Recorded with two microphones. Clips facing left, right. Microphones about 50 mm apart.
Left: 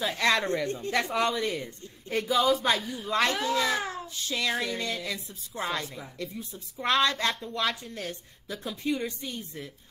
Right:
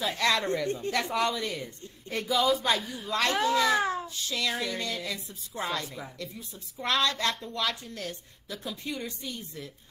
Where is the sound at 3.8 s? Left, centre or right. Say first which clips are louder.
Right 5 dB; centre.